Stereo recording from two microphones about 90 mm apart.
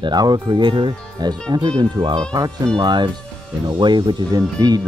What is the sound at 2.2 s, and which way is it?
Speech, 40° right (ahead or behind).